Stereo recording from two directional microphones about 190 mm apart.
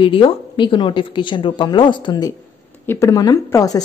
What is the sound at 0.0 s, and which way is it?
A woman's voice, 30° left (ahead or behind).